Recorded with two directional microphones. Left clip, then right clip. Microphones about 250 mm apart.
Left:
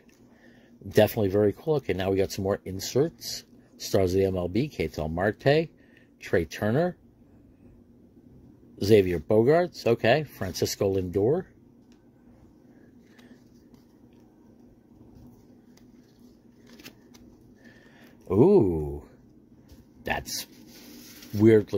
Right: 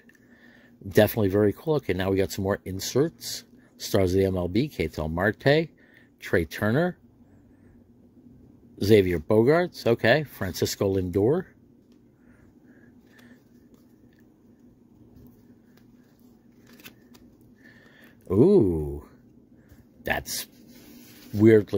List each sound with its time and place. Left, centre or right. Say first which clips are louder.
0.9 s speech: right 1 dB; centre
8.7 s speech: right 1 dB; centre
18.3 s a sound: even; centre
20.1 s speech: right 2 dB; centre